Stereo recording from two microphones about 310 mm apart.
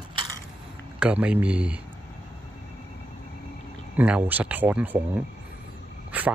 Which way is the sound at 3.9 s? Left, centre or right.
Centre.